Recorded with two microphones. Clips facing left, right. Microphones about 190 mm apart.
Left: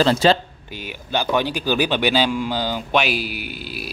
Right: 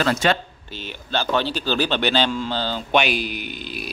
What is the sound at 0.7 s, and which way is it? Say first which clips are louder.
Speech: left 2 dB; 10° left (ahead or behind).